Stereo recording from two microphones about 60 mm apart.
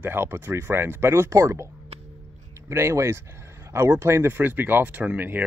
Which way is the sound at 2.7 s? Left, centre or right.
Right.